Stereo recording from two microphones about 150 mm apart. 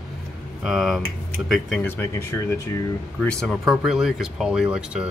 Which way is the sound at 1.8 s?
15° left (ahead or behind).